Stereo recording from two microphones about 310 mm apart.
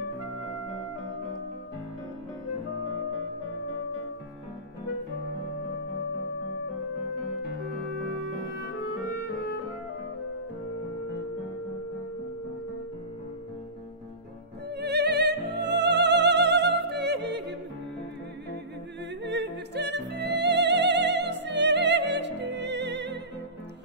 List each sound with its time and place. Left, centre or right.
14.8 s music: right
19.2 s music: right